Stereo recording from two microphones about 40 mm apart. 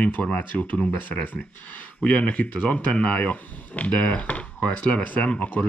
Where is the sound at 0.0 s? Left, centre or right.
Left.